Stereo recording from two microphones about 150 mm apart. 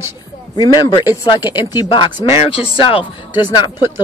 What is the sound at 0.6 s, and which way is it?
Speech, 25° left (ahead or behind).